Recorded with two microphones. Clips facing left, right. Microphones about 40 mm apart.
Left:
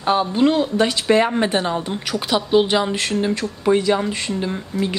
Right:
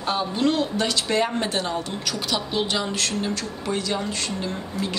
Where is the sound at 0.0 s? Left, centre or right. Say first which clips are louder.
Left 6 dB; centre.